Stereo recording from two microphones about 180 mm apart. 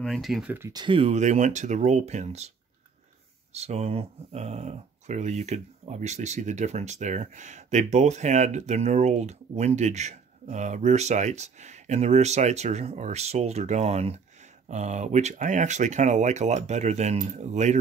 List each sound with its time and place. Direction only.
0.0 s speech: centre (ahead or behind); by 2.5 s 35° right (ahead or behind)
3.5 s speech: 35° right (ahead or behind)